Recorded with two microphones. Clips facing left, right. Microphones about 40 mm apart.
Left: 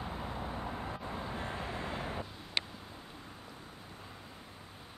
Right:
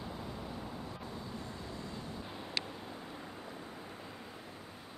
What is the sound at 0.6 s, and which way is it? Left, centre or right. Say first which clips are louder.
Vehicle: left 4 dB; left.